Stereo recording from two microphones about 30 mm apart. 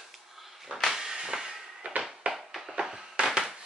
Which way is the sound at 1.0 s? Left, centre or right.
Right.